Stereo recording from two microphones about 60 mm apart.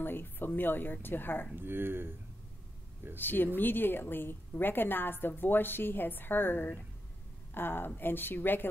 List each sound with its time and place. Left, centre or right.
0.0 s a woman's voice: left
1.5 s speech: right
3.2 s a woman's voice: left